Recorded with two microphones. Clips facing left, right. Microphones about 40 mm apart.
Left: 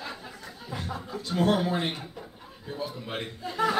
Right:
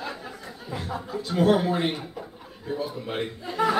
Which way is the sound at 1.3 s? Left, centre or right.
Centre.